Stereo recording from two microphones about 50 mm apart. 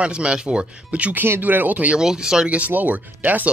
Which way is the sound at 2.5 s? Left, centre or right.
Right.